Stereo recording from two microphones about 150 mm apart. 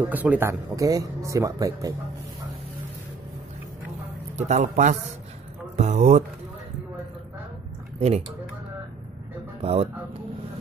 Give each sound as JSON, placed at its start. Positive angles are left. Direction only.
{"t": 0.0, "sound": "speech", "side_deg": -10}
{"t": 4.4, "sound": "a man's voice", "side_deg": -50}
{"t": 9.6, "sound": "speech", "side_deg": -40}